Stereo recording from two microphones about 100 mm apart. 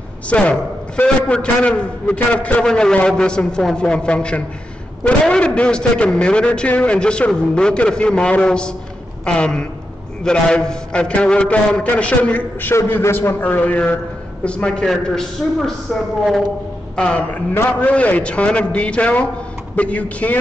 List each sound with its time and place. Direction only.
0.3 s a man's voice: 10° left (ahead or behind)
16.9 s a man's voice: 10° left (ahead or behind)